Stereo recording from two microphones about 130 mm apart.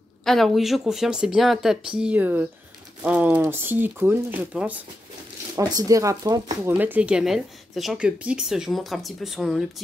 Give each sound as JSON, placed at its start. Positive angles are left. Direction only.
{"t": 0.2, "sound": "speech", "side_deg": 0}
{"t": 5.6, "sound": "speech", "side_deg": -25}
{"t": 6.7, "sound": "speech", "side_deg": -10}